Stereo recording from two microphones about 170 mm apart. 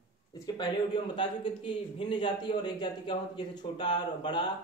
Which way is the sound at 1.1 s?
30° left (ahead or behind).